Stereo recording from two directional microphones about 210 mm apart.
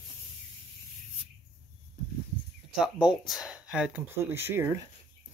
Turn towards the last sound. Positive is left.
turn(degrees=-10)  # may be behind; listen again after turning